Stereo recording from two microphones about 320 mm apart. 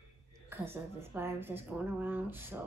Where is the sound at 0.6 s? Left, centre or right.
Centre.